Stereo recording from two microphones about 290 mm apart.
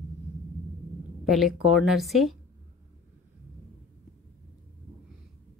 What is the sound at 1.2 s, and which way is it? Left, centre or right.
Speech, centre.